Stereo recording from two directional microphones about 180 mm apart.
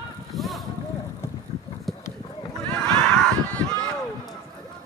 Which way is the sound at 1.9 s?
Centre (ahead or behind).